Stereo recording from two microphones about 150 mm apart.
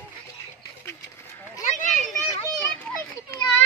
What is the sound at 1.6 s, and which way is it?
Children playing, 55° left (ahead or behind).